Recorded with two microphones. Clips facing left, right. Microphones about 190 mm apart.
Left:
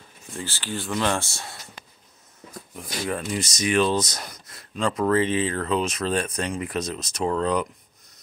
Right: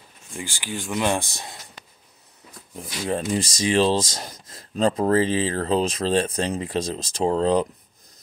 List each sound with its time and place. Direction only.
0.3 s speech: 15° right (ahead or behind)
3.1 s speech: 30° right (ahead or behind)